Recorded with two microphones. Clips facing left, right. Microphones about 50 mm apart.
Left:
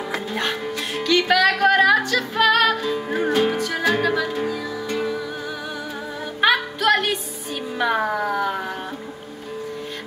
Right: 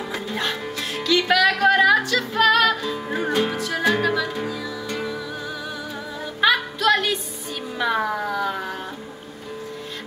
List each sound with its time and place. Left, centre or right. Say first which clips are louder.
0.3 s music: even; centre
6.4 s music: even; centre
8.3 s a sound: left 2 dB; centre